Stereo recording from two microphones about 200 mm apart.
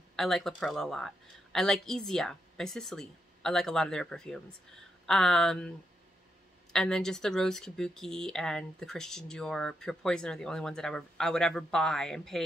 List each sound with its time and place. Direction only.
0.1 s speech: centre (ahead or behind)
6.7 s speech: 5° left (ahead or behind)